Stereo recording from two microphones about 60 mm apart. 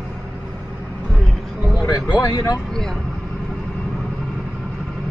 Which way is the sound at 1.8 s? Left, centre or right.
Left.